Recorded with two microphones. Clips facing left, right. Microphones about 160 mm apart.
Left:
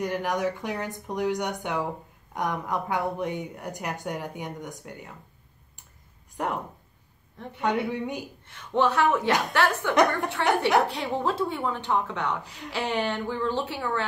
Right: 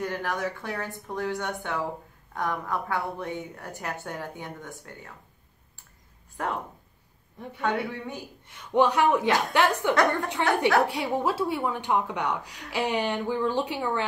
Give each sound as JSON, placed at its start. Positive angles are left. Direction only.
{"t": 0.0, "sound": "speech", "side_deg": 15}
{"t": 6.4, "sound": "speech", "side_deg": 15}
{"t": 8.5, "sound": "a woman's voice", "side_deg": -15}